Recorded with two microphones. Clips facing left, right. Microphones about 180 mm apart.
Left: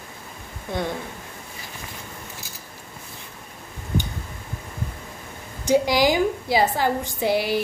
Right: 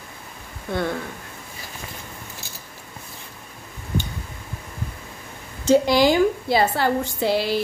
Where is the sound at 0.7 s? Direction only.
15° left (ahead or behind).